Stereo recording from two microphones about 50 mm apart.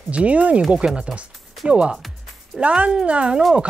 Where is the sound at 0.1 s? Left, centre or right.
Right.